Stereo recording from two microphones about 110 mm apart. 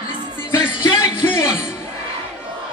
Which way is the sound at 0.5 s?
25° left (ahead or behind).